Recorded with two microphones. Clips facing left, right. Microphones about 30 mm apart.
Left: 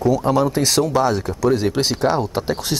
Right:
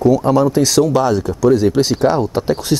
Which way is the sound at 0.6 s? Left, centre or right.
Centre.